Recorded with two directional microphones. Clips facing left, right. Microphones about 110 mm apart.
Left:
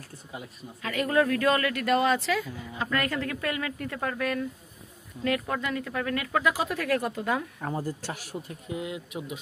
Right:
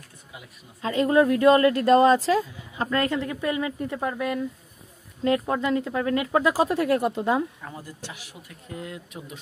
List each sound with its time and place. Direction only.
0.8 s speech: 25° right (ahead or behind)
7.6 s speech: 35° left (ahead or behind)
8.6 s speech: 10° left (ahead or behind)